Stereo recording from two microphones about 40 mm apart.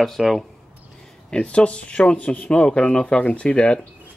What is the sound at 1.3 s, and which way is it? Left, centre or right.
Speech, left.